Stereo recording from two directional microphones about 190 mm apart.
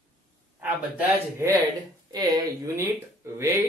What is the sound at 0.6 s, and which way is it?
Speech, 10° right (ahead or behind).